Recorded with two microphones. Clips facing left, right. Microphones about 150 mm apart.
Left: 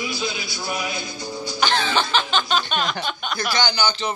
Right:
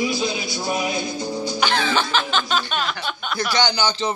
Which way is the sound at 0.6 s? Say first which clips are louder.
Right 4 dB; 20° right (ahead or behind).